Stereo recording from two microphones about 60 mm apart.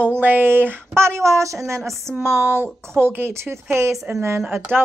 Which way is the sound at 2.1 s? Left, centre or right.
Right.